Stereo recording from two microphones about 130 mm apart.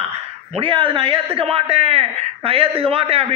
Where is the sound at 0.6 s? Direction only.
40° right (ahead or behind).